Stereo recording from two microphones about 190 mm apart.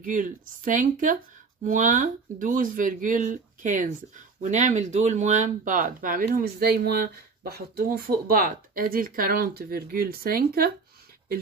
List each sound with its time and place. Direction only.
0.0 s speech: 45° right (ahead or behind)